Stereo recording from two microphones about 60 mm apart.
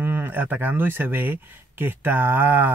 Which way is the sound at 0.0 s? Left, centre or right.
Right.